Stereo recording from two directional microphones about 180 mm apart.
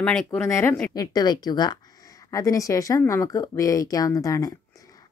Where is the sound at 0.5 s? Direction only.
15° left (ahead or behind).